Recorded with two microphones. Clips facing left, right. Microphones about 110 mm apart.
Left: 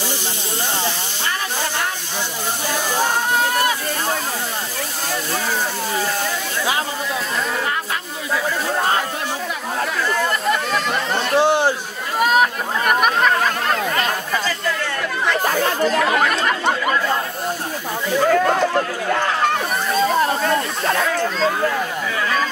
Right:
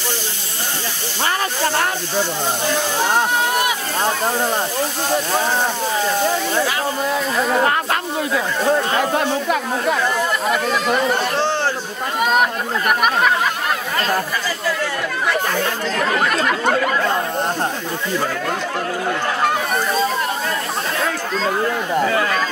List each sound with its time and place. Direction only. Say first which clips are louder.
7.6 s snake: right 6 dB; 55° right (ahead or behind)
11.3 s a sound: left 4 dB; 15° left (ahead or behind)
15.8 s speech: left 3 dB; 10° left (ahead or behind)